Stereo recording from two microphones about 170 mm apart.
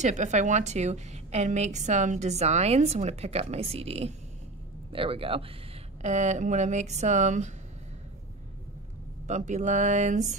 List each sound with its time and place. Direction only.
0.0 s a woman's voice: 45° right (ahead or behind)
6.0 s speech: 45° right (ahead or behind)
9.3 s speech: 45° right (ahead or behind)